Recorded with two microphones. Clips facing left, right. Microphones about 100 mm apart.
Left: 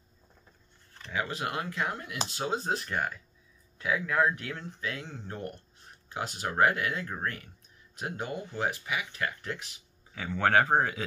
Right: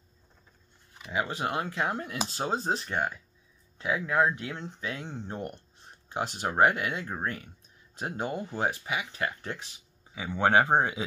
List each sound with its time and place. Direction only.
1.1 s speech: 20° right (ahead or behind)
8.0 s speech: 30° right (ahead or behind)